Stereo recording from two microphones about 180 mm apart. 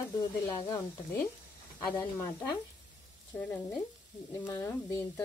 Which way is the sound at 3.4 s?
10° left (ahead or behind).